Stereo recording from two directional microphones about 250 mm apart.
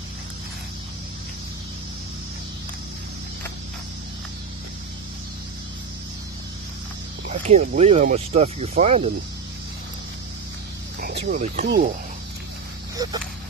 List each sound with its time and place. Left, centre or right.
7.2 s speech: right
11.0 s speech: right
12.9 s speech: centre